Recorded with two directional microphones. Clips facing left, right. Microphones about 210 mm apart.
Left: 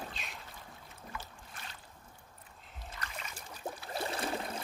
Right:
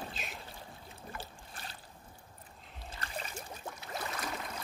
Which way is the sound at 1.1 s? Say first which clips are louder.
Right 1 dB; 35° right (ahead or behind).